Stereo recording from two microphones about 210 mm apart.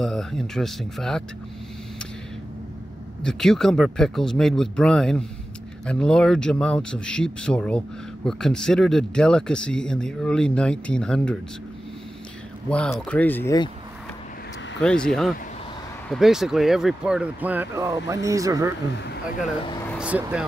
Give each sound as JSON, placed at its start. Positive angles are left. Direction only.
{"t": 0.0, "sound": "speech", "side_deg": 0}
{"t": 3.2, "sound": "speech", "side_deg": 5}
{"t": 12.6, "sound": "speech", "side_deg": 5}
{"t": 14.8, "sound": "speech", "side_deg": 5}
{"t": 20.0, "sound": "speech", "side_deg": -5}